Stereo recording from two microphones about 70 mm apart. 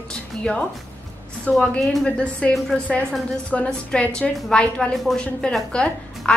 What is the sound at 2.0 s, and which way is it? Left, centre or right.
A woman's voice, centre.